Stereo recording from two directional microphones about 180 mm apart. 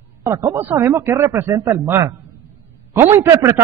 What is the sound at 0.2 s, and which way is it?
A man's voice, 15° right (ahead or behind).